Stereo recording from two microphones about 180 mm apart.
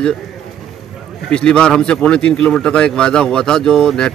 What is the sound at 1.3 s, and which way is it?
Speech, 5° left (ahead or behind).